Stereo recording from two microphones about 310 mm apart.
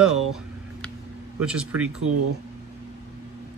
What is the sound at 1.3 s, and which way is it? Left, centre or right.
Speech, centre.